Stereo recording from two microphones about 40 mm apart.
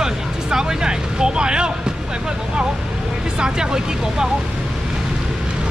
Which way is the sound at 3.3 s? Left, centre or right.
Centre.